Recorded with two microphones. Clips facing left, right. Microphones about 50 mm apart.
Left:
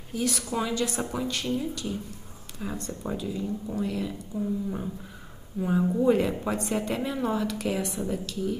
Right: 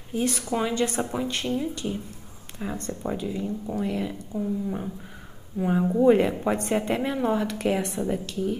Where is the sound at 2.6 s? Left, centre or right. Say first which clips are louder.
Right 3 dB; right.